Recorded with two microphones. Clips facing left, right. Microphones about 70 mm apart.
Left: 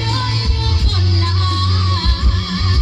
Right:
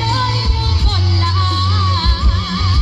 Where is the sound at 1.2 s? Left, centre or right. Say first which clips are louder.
Right 4 dB; right.